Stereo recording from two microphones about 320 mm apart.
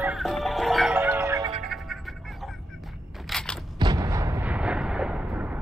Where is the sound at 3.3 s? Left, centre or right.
Centre.